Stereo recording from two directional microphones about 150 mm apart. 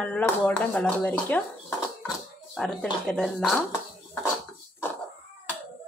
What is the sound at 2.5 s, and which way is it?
Speech, 5° left (ahead or behind).